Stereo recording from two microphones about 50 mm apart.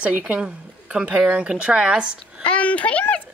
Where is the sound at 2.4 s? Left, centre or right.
Left.